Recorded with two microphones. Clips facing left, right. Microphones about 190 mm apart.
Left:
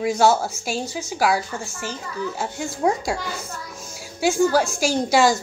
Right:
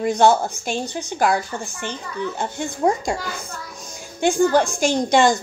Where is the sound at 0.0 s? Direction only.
5° left (ahead or behind).